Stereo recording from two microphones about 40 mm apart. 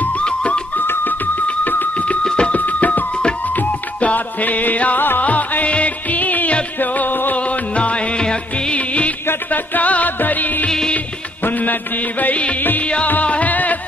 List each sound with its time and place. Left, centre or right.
0.2 s music: left
0.7 s music: left
2.2 s music: left
2.5 s music: left
7.3 s music: left
8.7 s music: left
12.8 s music: left